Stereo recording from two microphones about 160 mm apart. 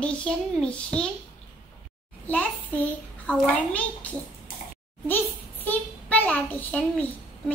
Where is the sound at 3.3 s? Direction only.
10° left (ahead or behind).